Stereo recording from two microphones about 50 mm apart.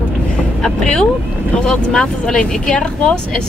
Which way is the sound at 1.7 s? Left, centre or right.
Centre.